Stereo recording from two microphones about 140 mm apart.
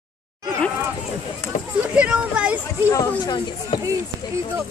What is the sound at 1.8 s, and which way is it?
Speech, 10° right (ahead or behind).